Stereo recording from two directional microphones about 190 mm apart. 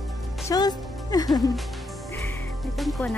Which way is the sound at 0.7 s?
Centre (ahead or behind).